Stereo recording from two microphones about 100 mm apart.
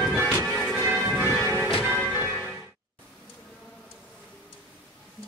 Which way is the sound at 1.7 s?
5° left (ahead or behind).